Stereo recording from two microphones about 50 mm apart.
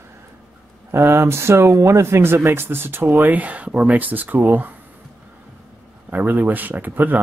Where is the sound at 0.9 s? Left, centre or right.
Right.